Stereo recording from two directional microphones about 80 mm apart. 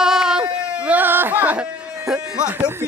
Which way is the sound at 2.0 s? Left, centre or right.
Centre.